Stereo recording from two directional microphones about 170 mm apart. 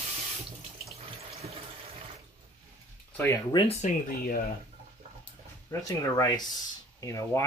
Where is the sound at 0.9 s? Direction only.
35° right (ahead or behind).